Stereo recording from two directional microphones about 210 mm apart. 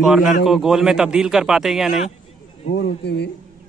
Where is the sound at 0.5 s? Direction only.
Centre (ahead or behind).